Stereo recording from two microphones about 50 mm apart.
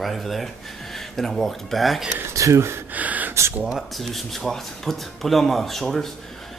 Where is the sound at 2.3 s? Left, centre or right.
Right.